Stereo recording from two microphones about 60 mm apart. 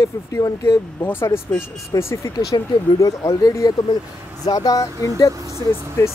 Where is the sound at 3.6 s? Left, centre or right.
Left.